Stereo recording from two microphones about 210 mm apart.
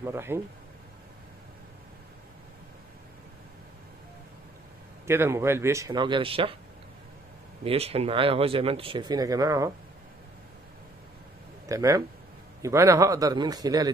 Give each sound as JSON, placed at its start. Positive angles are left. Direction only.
{"t": 0.0, "sound": "speech", "side_deg": -10}
{"t": 5.0, "sound": "speech", "side_deg": -10}
{"t": 7.6, "sound": "speech", "side_deg": -30}
{"t": 11.6, "sound": "speech", "side_deg": -15}